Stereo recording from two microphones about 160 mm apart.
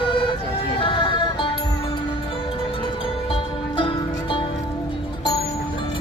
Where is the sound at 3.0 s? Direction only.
35° left (ahead or behind).